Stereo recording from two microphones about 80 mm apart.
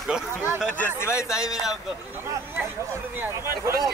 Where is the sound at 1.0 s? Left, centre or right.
Left.